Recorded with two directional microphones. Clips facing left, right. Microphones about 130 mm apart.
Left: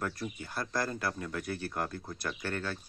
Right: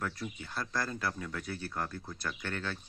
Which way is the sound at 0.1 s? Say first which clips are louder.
Left 2 dB; 45° left (ahead or behind).